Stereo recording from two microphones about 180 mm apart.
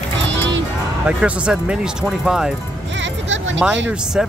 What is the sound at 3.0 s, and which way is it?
Music, 90° right.